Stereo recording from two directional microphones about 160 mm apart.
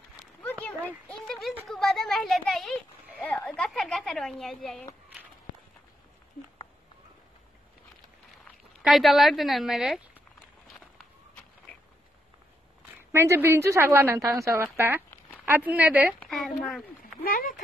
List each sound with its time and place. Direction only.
0.4 s a sound: 10° left (ahead or behind)
1.2 s a sound: centre (ahead or behind)
1.7 s a child's voice: centre (ahead or behind)
8.5 s speech: centre (ahead or behind)
13.1 s speech: 15° right (ahead or behind)
16.2 s a child's voice: centre (ahead or behind)
17.2 s speech: 60° left (ahead or behind)